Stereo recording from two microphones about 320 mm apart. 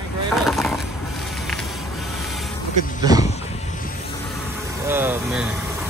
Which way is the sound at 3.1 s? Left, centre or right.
Centre.